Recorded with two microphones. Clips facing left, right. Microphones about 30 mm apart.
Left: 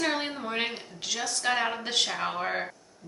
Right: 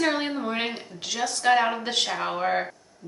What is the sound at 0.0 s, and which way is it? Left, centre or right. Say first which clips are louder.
A woman's voice: right 4 dB; centre.